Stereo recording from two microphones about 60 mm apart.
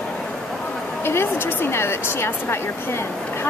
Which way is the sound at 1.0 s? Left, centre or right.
Left.